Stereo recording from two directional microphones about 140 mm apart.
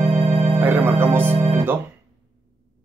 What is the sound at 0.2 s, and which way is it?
Music, 40° right (ahead or behind).